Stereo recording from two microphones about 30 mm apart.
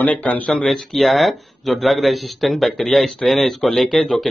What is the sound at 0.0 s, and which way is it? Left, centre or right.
Speech, left.